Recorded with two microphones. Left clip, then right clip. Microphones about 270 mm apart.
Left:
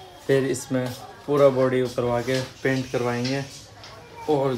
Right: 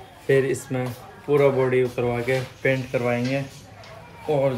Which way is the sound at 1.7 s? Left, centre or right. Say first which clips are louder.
Right 1 dB; left.